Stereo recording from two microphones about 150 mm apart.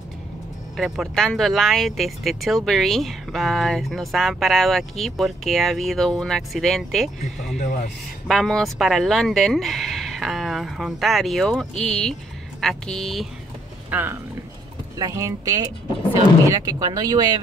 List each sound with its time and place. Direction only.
0.7 s speech: centre (ahead or behind)
7.5 s speech: 55° left (ahead or behind)
8.3 s speech: centre (ahead or behind)
13.8 s speech: 10° right (ahead or behind)